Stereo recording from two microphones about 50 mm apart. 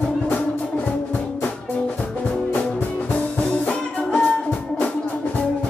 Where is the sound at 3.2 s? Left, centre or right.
Left.